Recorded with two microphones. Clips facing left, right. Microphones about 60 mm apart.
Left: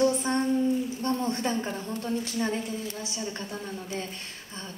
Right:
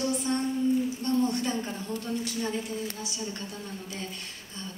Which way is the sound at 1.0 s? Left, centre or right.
Left.